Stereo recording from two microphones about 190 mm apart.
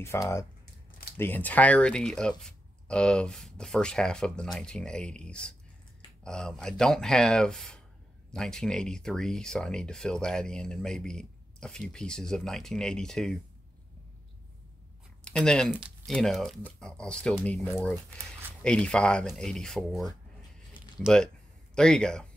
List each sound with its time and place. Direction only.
0.0 s speech: 15° left (ahead or behind)
15.2 s speech: 5° left (ahead or behind)
18.6 s speech: 5° left (ahead or behind)